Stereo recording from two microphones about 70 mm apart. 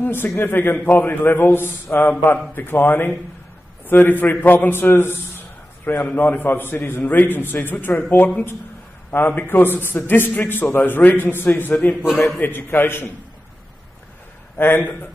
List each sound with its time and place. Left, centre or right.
0.0 s a man's voice: left
9.1 s a man's voice: left
14.6 s a man's voice: left